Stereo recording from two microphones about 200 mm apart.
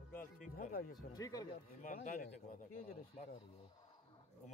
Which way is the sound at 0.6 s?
45° left (ahead or behind).